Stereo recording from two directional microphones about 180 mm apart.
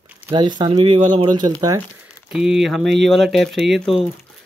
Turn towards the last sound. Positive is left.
turn(degrees=0)  # may be behind; listen again after turning